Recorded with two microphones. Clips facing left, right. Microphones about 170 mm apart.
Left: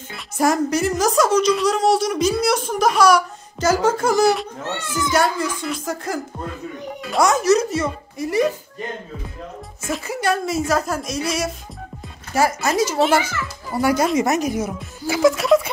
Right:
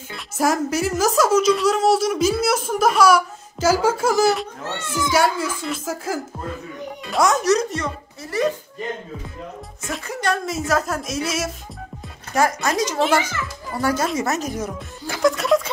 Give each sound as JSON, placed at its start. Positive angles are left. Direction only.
{"t": 0.4, "sound": "a woman's voice", "side_deg": -5}
{"t": 9.8, "sound": "a woman's voice", "side_deg": 5}